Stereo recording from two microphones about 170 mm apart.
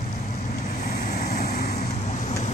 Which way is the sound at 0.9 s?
45° left (ahead or behind).